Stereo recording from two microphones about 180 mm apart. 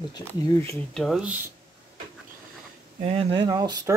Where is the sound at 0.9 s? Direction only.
Centre (ahead or behind).